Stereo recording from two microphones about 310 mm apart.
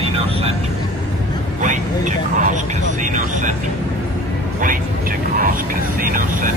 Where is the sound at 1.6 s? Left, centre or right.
Right.